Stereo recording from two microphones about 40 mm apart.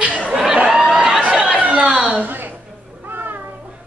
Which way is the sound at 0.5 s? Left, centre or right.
Centre.